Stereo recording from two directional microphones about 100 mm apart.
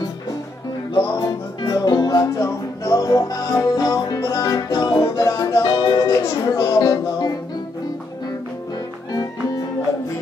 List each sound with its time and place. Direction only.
1.2 s music: 40° left (ahead or behind)
6.0 s music: 35° left (ahead or behind)